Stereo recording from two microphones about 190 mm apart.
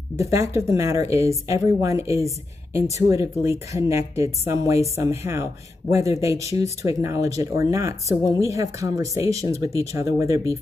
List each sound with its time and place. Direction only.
0.2 s speech: 15° right (ahead or behind)